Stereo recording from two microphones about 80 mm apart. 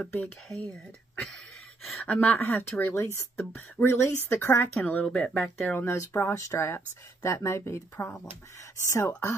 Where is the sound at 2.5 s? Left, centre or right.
Left.